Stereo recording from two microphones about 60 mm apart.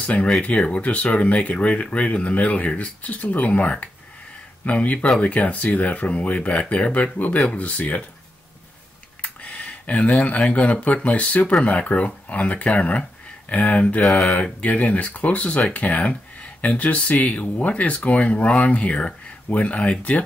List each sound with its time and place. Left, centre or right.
0.0 s speech: left
9.2 s speech: left
13.7 s speech: centre